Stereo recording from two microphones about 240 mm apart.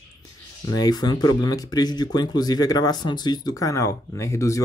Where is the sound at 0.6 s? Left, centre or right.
Centre.